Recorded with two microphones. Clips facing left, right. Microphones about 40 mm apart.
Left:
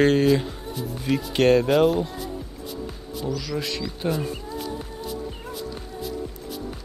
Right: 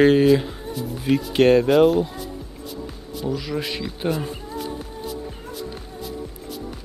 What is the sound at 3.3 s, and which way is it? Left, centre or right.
Speech, centre.